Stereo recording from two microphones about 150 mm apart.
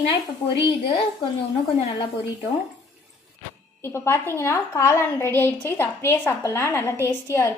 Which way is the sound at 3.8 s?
15° left (ahead or behind).